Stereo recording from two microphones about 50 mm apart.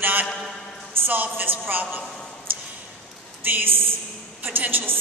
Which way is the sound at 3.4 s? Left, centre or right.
Right.